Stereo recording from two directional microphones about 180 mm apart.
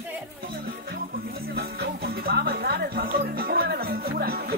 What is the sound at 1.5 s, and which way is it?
Music, 60° right (ahead or behind).